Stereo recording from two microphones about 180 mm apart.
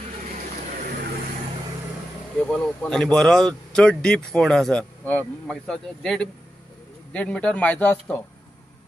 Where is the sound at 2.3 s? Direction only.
Centre (ahead or behind).